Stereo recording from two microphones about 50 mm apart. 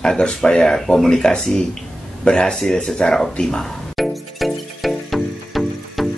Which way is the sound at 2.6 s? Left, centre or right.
Centre.